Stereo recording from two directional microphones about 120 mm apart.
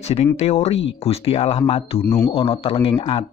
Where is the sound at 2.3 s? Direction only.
55° left (ahead or behind).